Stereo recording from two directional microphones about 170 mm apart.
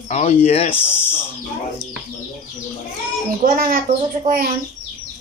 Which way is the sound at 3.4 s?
55° right (ahead or behind).